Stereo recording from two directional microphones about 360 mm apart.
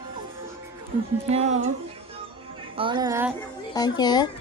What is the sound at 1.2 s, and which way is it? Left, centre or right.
Speech, centre.